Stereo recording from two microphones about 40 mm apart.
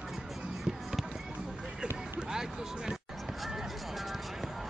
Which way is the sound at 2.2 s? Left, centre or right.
Centre.